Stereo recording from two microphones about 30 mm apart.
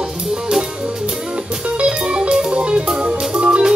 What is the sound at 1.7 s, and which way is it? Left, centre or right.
Music, right.